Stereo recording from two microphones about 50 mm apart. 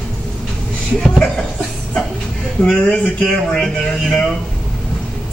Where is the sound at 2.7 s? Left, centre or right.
Left.